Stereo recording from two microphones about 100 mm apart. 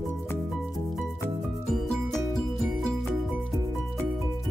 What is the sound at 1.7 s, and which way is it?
Music, 5° left (ahead or behind).